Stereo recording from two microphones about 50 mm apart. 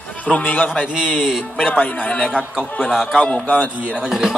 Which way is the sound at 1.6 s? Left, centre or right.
Left.